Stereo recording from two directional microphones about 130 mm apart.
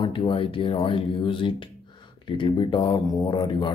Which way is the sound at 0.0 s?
40° left (ahead or behind).